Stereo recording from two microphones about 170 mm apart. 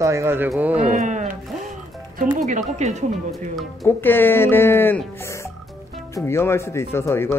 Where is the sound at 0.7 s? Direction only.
40° right (ahead or behind).